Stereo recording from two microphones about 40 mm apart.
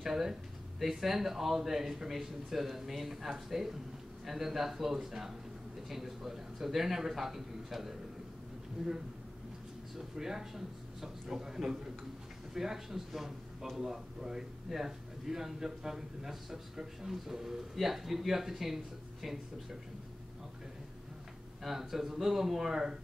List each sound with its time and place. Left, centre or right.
0.0 s a man's voice: centre
9.9 s a man's voice: centre
21.6 s a man's voice: centre